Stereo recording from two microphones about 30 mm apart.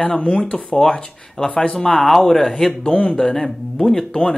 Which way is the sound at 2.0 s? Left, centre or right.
Centre.